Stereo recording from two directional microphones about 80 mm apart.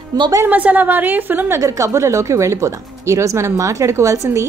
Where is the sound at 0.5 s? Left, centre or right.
Right.